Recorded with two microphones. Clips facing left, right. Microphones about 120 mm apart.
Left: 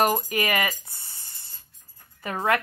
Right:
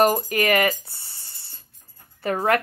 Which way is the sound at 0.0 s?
40° right (ahead or behind).